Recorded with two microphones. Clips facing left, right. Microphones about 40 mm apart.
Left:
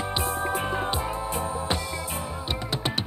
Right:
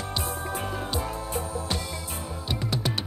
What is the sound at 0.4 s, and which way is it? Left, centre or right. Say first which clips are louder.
Music: left 5 dB; left.